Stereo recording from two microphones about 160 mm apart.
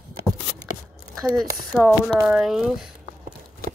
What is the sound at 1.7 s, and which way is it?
Speech, 5° left (ahead or behind).